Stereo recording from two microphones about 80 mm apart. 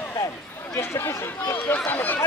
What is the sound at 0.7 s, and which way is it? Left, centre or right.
Speech, left.